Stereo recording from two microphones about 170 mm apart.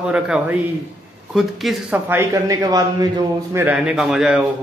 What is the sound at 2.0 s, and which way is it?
A man's voice, 15° right (ahead or behind).